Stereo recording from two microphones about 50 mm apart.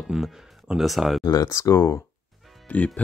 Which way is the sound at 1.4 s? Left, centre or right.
Left.